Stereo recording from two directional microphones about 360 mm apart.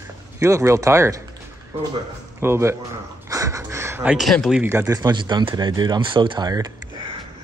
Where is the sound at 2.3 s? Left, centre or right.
Centre.